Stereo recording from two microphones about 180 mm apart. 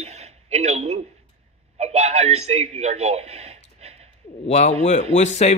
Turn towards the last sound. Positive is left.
turn(degrees=40)  # may be behind; listen again after turning